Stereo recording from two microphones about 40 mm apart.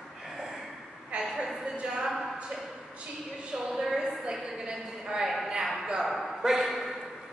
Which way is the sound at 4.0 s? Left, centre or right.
Centre.